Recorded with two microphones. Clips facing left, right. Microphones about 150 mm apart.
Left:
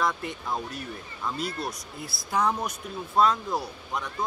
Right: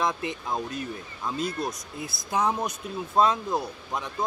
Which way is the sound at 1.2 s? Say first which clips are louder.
Right 2 dB; 20° right (ahead or behind).